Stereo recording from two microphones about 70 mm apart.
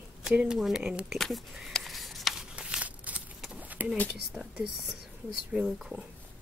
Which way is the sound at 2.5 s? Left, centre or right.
Centre.